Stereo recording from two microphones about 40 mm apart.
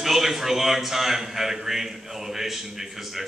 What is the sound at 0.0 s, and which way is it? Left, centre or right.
A man's voice, centre.